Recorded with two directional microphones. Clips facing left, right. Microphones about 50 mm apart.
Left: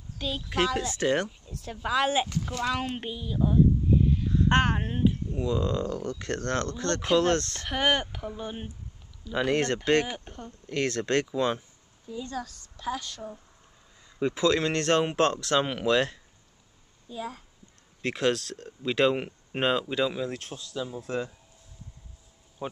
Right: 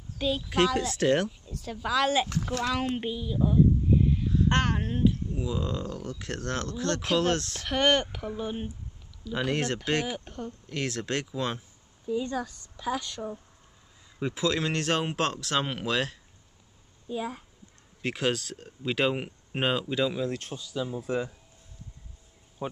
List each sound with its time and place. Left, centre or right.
0.2 s speech: centre
2.5 s speech: centre
4.1 s a sound: centre
4.6 s speech: centre
5.4 s speech: centre
12.8 s speech: centre
18.0 s speech: centre
22.6 s speech: centre